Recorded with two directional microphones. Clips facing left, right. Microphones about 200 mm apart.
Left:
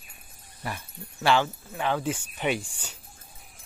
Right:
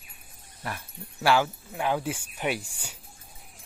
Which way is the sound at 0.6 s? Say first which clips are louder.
Left 1 dB; 5° right (ahead or behind).